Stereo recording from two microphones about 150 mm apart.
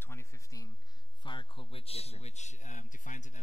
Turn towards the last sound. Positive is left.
turn(degrees=55)  # may be behind; listen again after turning